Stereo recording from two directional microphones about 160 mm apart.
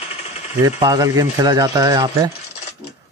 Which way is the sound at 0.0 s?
45° left (ahead or behind).